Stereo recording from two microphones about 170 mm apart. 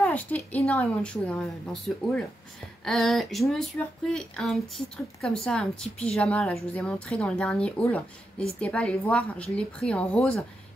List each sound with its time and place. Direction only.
0.0 s a woman's voice: 10° left (ahead or behind)